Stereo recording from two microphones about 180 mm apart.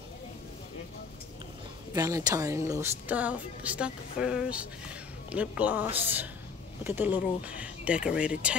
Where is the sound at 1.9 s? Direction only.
20° right (ahead or behind).